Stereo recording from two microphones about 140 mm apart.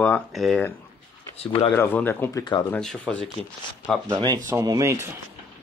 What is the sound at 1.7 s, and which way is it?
Speech, 15° left (ahead or behind).